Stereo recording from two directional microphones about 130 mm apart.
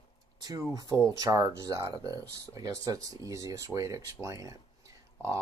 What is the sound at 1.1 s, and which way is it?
Speech, 30° right (ahead or behind).